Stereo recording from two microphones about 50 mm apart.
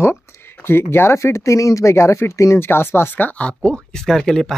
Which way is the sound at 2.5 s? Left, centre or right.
Left.